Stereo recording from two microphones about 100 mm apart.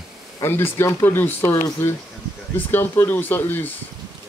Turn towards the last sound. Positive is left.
turn(degrees=20)  # may be behind; listen again after turning